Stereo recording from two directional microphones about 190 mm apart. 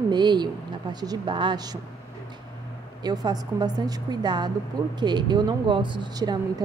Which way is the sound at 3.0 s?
20° right (ahead or behind).